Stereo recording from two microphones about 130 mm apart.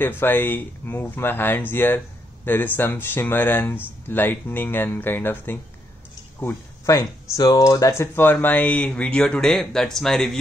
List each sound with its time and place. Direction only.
0.0 s speech: 15° left (ahead or behind)
8.0 s speech: 15° left (ahead or behind)